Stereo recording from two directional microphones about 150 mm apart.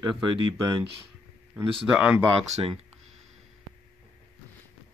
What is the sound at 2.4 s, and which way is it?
Speech, 40° right (ahead or behind).